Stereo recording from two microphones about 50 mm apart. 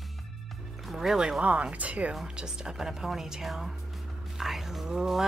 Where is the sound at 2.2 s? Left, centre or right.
Centre.